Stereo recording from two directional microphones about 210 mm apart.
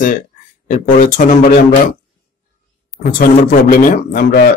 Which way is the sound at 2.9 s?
45° left (ahead or behind).